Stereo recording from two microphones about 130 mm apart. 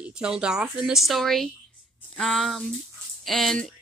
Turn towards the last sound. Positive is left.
turn(degrees=5)  # may be behind; listen again after turning